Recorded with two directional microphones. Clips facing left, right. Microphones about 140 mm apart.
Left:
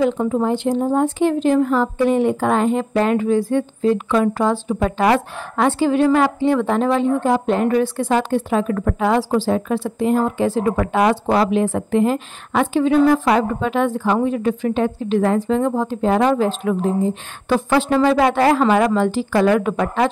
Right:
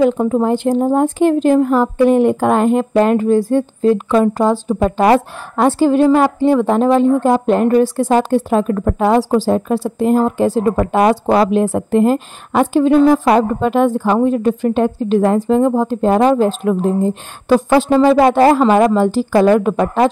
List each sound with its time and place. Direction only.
0.0 s a woman's voice: 45° right (ahead or behind)
17.5 s a woman's voice: 35° right (ahead or behind)